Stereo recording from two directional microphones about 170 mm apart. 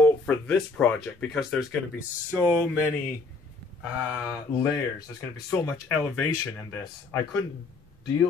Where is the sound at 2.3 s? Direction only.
10° right (ahead or behind).